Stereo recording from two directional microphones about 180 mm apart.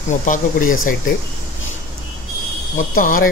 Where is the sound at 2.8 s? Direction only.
50° left (ahead or behind).